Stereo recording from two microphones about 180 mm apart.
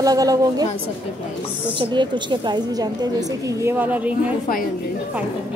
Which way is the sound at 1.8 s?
25° right (ahead or behind).